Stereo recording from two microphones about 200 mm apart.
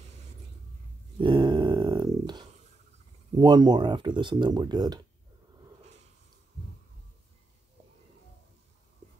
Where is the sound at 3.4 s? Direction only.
20° right (ahead or behind).